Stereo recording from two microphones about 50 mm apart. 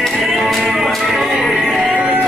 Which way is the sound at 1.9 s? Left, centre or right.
Right.